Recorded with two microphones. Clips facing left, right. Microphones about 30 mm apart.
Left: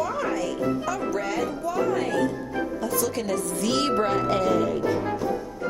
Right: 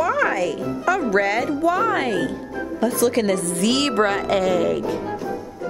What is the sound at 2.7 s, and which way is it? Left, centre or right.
A woman's voice, right.